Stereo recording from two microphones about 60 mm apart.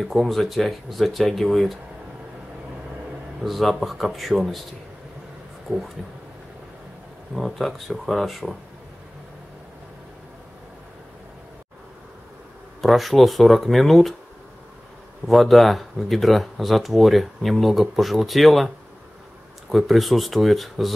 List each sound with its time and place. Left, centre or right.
0.0 s speech: centre
3.4 s speech: centre
7.3 s speech: centre
12.8 s speech: centre
15.2 s speech: centre
19.7 s speech: centre